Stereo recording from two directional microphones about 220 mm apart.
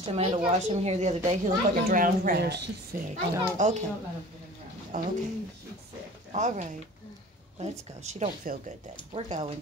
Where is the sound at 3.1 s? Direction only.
30° right (ahead or behind).